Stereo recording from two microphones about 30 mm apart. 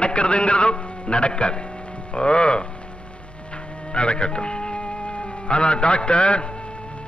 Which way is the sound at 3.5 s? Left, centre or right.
Left.